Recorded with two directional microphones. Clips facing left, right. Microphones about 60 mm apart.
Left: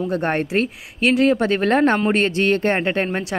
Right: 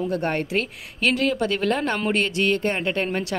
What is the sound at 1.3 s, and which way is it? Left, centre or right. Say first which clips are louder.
Speech: left 5 dB; left.